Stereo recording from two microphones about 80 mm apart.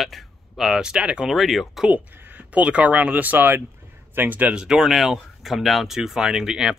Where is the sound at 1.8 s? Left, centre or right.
Right; by 6.7 s centre.